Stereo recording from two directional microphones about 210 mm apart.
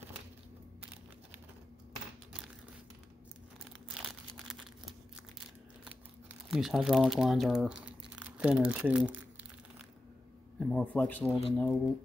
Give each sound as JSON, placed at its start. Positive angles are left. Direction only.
{"t": 3.9, "sound": "crumpling", "side_deg": 0}
{"t": 6.5, "sound": "speech", "side_deg": 0}
{"t": 8.2, "sound": "crumpling", "side_deg": -5}
{"t": 10.6, "sound": "speech", "side_deg": 5}